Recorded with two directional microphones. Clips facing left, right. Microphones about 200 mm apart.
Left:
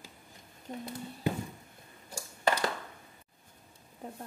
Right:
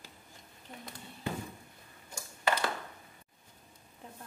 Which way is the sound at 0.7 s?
45° left (ahead or behind).